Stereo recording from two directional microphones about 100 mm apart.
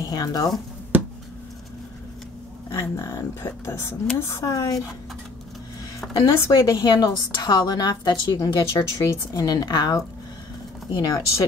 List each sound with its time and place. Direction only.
0.1 s a woman's voice: 40° left (ahead or behind)
2.7 s a woman's voice: 30° left (ahead or behind)
6.1 s a woman's voice: 35° left (ahead or behind)
6.8 s a woman's voice: 45° left (ahead or behind)